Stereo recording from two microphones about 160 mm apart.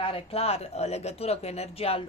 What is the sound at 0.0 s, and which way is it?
A woman's voice, 35° left (ahead or behind).